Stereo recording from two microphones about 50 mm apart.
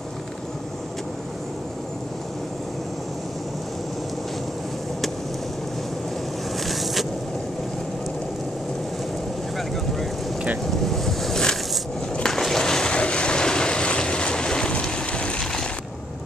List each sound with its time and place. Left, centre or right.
6.6 s vehicle: centre
10.7 s boat: centre
12.2 s a sound: centre
12.9 s boat: left